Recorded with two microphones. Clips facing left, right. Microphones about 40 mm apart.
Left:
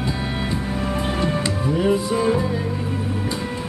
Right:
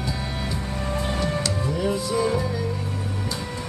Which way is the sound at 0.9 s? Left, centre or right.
Centre.